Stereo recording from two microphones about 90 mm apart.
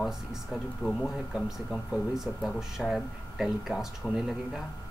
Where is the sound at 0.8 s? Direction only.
5° left (ahead or behind).